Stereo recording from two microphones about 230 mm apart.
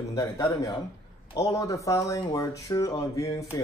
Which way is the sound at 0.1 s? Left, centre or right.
Centre.